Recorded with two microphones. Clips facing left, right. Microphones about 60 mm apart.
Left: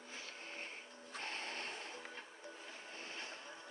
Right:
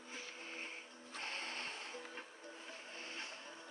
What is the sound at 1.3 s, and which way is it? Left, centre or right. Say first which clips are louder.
Music: even; left.